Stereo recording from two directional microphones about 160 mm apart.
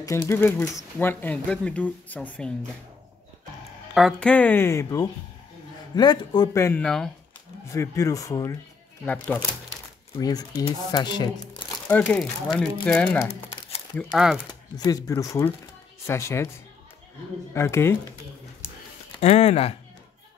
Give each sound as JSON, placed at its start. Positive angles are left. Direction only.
{"t": 0.0, "sound": "speech", "side_deg": 20}
{"t": 3.9, "sound": "speech", "side_deg": 0}
{"t": 6.8, "sound": "speech", "side_deg": 5}
{"t": 7.6, "sound": "speech", "side_deg": 20}
{"t": 9.0, "sound": "speech", "side_deg": 10}
{"t": 10.1, "sound": "speech", "side_deg": 25}
{"t": 11.9, "sound": "speech", "side_deg": 10}
{"t": 14.1, "sound": "speech", "side_deg": -5}
{"t": 14.8, "sound": "speech", "side_deg": 20}
{"t": 17.6, "sound": "speech", "side_deg": 15}
{"t": 19.1, "sound": "speech", "side_deg": 40}